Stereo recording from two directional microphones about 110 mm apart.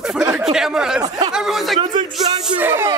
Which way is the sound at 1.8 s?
45° right (ahead or behind).